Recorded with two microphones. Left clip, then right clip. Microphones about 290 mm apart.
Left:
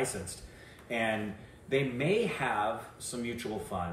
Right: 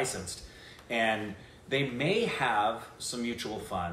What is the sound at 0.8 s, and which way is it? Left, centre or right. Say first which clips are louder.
Speech: right 3 dB; centre.